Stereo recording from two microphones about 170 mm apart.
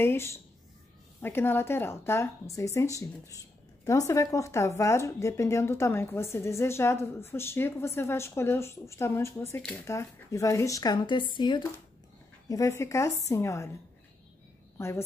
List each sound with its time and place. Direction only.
0.0 s speech: 15° left (ahead or behind)
14.8 s speech: 15° left (ahead or behind)